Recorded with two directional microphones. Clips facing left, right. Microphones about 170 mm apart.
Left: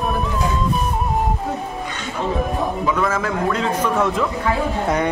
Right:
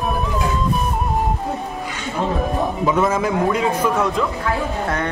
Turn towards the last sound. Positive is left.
turn(degrees=15)  # may be behind; listen again after turning